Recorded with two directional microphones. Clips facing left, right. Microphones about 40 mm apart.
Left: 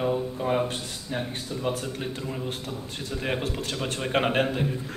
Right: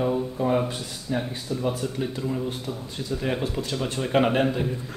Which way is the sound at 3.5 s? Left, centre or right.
Centre.